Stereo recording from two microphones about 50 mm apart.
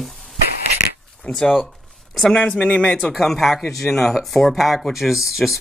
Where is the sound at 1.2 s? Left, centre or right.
Centre.